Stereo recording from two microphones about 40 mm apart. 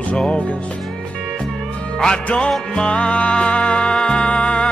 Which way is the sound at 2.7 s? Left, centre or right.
Left.